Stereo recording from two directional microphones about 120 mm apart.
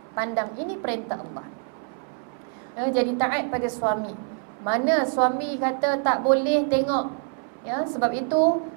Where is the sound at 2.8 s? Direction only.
20° right (ahead or behind).